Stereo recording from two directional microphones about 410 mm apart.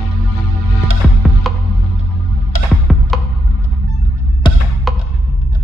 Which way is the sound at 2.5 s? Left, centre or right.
Left.